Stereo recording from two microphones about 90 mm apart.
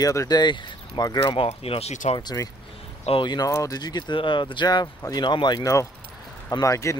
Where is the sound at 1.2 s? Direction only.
75° left (ahead or behind).